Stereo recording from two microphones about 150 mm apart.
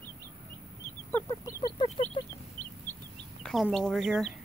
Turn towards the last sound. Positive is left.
turn(degrees=0)  # may be behind; listen again after turning